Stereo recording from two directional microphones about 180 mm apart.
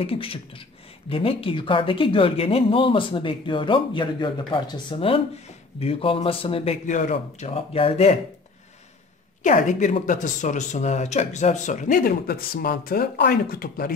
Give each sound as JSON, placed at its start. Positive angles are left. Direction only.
{"t": 0.0, "sound": "speech", "side_deg": 30}
{"t": 9.4, "sound": "speech", "side_deg": 45}